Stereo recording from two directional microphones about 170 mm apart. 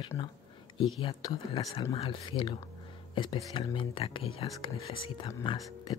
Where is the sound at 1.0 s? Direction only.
30° left (ahead or behind).